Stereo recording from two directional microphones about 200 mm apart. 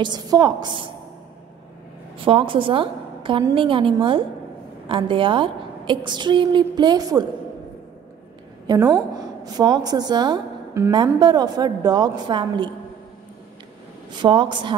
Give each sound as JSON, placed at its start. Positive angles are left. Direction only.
{"t": 0.0, "sound": "a woman's voice", "side_deg": -20}
{"t": 2.2, "sound": "a woman's voice", "side_deg": -25}
{"t": 8.6, "sound": "a woman's voice", "side_deg": -20}
{"t": 14.1, "sound": "a woman's voice", "side_deg": -25}